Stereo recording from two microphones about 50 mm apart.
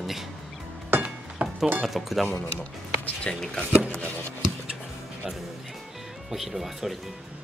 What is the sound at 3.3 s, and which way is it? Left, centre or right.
Speech, centre.